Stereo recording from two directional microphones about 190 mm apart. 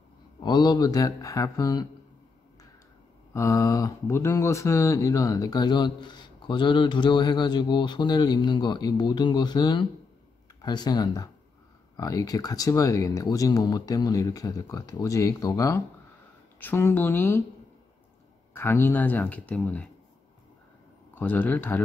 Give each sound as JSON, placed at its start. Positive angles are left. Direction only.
{"t": 0.4, "sound": "speech", "side_deg": 20}
{"t": 3.3, "sound": "speech", "side_deg": 15}
{"t": 18.5, "sound": "speech", "side_deg": 10}
{"t": 21.1, "sound": "speech", "side_deg": 10}